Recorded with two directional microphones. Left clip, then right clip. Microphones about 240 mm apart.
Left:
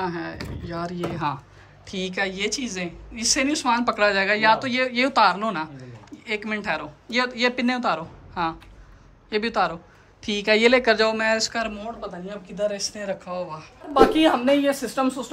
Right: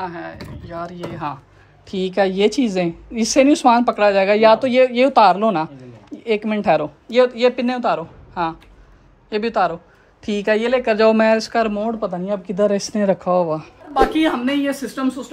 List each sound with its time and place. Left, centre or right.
0.0 s a woman's voice: centre
12.0 s speech: right
13.9 s speech: centre